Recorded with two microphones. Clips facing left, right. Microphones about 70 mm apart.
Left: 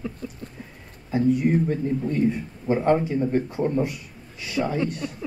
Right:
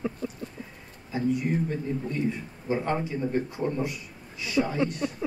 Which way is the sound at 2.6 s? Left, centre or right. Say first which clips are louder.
Left 7 dB; left.